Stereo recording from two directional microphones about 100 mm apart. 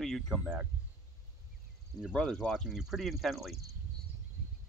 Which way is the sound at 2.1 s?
5° left (ahead or behind).